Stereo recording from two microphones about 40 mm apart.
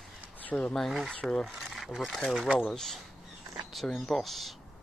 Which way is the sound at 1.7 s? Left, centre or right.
Centre.